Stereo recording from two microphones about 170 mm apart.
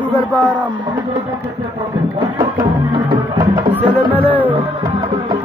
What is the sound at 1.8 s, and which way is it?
Music, 30° right (ahead or behind).